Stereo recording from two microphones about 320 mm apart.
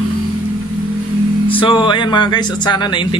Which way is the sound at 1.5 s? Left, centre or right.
Centre.